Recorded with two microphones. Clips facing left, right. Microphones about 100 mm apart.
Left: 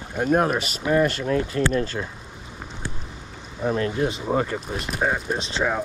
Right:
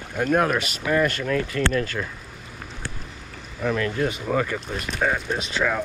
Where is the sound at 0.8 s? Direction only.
25° left (ahead or behind).